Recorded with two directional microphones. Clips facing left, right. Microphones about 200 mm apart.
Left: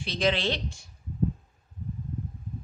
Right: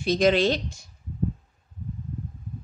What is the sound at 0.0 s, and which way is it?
Speech, 45° right (ahead or behind).